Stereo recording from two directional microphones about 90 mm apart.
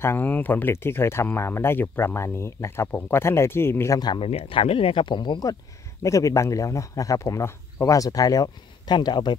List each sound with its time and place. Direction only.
0.0 s speech: 25° left (ahead or behind)
3.9 s speech: 50° left (ahead or behind)
4.2 s speech: 85° left; by 5.6 s 50° left (ahead or behind)
6.0 s speech: 35° left (ahead or behind); by 9.3 s 55° left (ahead or behind)